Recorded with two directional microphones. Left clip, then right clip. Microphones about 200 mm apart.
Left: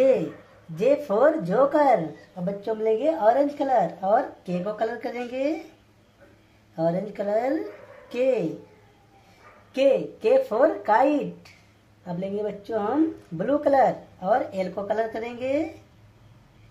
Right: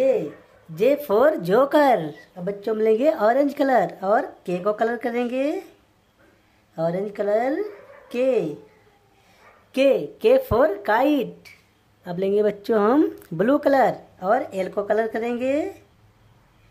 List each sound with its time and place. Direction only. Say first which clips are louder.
1.0 s a woman's voice: right 2 dB; 30° right (ahead or behind)
2.4 s a woman's voice: right 4 dB; 40° right (ahead or behind)
6.7 s a woman's voice: right 1 dB; 25° right (ahead or behind)
9.8 s a woman's voice: right 2 dB; 25° right (ahead or behind)
12.2 s speech: right 9 dB; 50° right (ahead or behind)
13.4 s a woman's voice: right 2 dB; 35° right (ahead or behind)